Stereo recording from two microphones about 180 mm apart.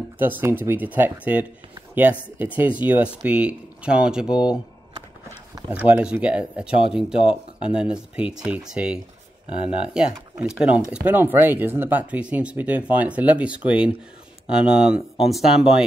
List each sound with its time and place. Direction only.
0.2 s speech: 10° right (ahead or behind)
5.7 s speech: 10° right (ahead or behind)
9.5 s speech: 30° left (ahead or behind)
9.8 s speech: 5° right (ahead or behind)